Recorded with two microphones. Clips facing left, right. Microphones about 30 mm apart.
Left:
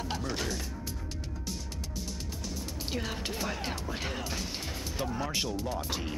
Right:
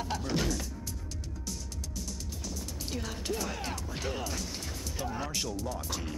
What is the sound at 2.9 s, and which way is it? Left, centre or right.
Speech, left.